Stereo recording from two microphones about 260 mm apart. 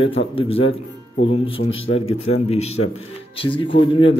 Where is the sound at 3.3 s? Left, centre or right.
Centre.